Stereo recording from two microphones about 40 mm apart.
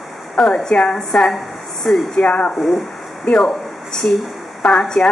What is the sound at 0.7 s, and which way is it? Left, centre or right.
A woman's voice, centre.